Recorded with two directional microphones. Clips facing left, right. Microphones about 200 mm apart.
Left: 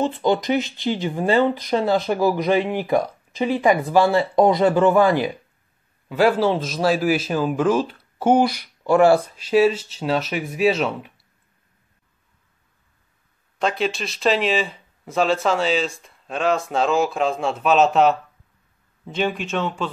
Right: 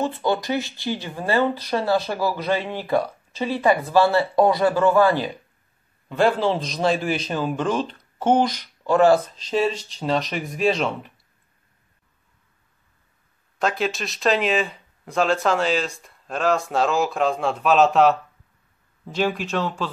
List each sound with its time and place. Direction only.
0.0 s a man's voice: 20° left (ahead or behind)
13.6 s a man's voice: centre (ahead or behind)
19.1 s a man's voice: centre (ahead or behind)